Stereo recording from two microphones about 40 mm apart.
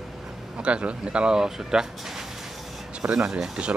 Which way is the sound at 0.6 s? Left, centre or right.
Right.